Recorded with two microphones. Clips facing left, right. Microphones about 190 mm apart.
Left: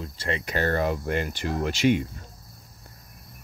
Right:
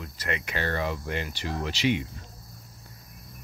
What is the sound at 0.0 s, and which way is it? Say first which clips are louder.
Speech: left 3 dB; 30° left (ahead or behind).